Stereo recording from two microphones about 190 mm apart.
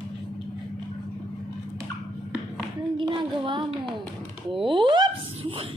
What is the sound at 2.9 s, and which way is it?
Child singing, 25° right (ahead or behind).